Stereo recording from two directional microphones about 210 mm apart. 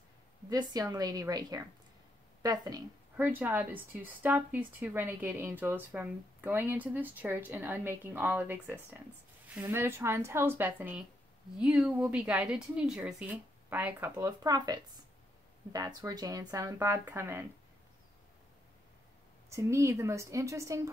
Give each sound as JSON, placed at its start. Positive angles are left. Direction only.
{"t": 0.5, "sound": "a woman's voice", "side_deg": -20}
{"t": 19.5, "sound": "a woman's voice", "side_deg": -15}